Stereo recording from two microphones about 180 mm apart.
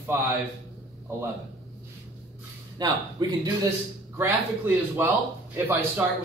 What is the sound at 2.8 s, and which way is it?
A man's voice, 20° right (ahead or behind).